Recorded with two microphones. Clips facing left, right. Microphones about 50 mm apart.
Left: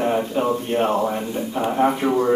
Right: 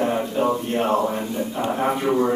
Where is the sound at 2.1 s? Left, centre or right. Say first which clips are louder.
Left 1 dB; centre.